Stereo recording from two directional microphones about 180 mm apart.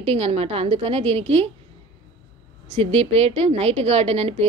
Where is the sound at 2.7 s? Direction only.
35° right (ahead or behind).